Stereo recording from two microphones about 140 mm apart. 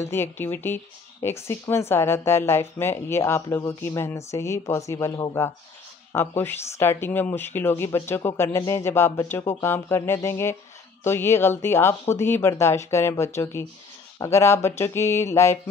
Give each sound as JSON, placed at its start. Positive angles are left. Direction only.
{"t": 0.0, "sound": "a woman's voice", "side_deg": 15}